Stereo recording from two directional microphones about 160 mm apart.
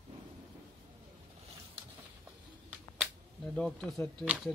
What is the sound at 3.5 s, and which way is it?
Speech, 5° left (ahead or behind).